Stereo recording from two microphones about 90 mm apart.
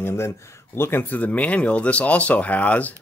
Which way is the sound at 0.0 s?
30° left (ahead or behind).